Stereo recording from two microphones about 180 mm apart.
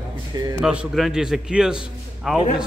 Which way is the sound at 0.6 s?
Centre (ahead or behind).